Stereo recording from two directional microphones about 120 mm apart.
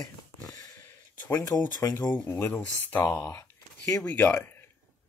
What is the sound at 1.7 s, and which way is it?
Speech, 35° left (ahead or behind).